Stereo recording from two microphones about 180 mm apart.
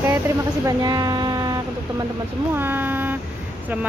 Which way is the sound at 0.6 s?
20° right (ahead or behind).